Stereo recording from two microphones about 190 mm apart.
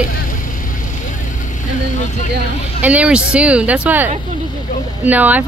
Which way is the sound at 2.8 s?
5° right (ahead or behind).